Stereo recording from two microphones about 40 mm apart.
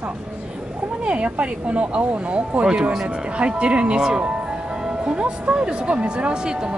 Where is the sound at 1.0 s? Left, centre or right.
Right.